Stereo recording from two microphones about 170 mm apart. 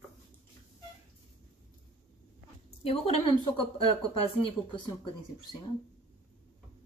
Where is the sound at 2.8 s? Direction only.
35° left (ahead or behind).